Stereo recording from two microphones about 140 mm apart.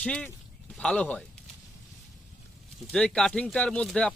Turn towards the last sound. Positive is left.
turn(degrees=5)  # may be behind; listen again after turning